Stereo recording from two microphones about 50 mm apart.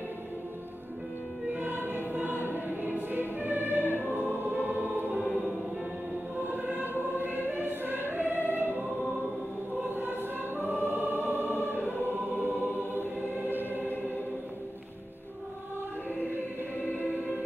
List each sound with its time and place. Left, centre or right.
1.6 s choir: right
3.1 s music: right
4.0 s choir: right
6.4 s choir: right
9.8 s choir: right
10.7 s music: right
11.2 s choir: right
12.4 s music: right
16.8 s choir: left